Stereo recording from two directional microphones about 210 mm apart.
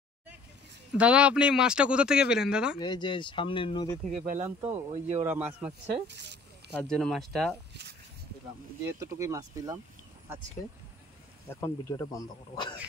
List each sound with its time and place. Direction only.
0.9 s speech: 5° right (ahead or behind)
2.8 s speech: 20° left (ahead or behind)
3.9 s speech: 5° left (ahead or behind)
4.6 s speech: 30° right (ahead or behind)
5.2 s speech: 5° right (ahead or behind)
6.7 s speech: 5° left (ahead or behind)
8.8 s speech: 15° right (ahead or behind)
11.4 s speech: 15° left (ahead or behind)